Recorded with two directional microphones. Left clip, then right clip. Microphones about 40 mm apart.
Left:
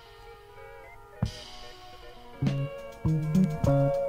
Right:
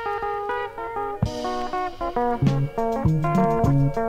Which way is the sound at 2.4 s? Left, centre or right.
Right.